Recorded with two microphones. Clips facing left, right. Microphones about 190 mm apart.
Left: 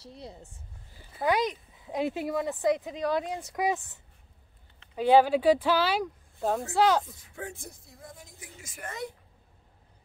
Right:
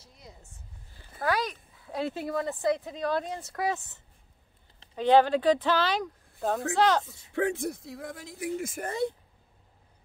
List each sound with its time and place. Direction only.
0.0 s speech: 30° left (ahead or behind)
0.9 s speech: 20° left (ahead or behind)
7.3 s speech: 70° right (ahead or behind)
8.8 s a woman's voice: 30° right (ahead or behind)